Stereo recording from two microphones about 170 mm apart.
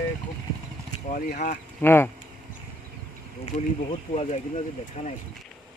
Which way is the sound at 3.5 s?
40° left (ahead or behind).